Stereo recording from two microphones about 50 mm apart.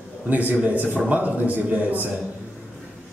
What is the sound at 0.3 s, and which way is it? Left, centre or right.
A man's voice, right.